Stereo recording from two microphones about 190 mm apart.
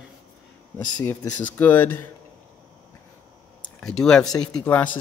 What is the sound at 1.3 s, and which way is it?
Speech, 10° left (ahead or behind).